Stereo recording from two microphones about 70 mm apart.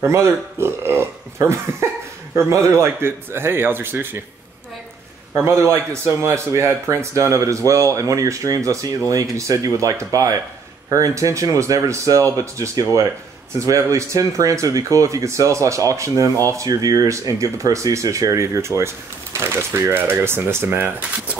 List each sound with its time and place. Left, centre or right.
0.0 s speech: right
5.3 s speech: right